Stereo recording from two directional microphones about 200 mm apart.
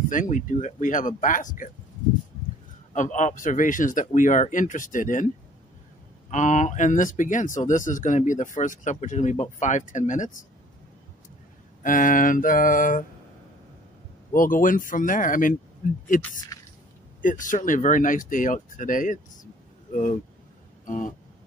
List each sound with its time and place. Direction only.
0.1 s speech: 40° left (ahead or behind)
2.9 s speech: 40° left (ahead or behind)
6.3 s speech: 40° left (ahead or behind)
11.8 s speech: 40° left (ahead or behind)
14.3 s speech: 45° left (ahead or behind)
16.5 s a sound: 15° left (ahead or behind)
17.2 s speech: 40° left (ahead or behind)
20.8 s a sound: 40° left (ahead or behind)